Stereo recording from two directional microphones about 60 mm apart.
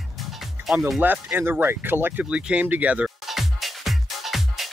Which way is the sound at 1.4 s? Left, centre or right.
Right.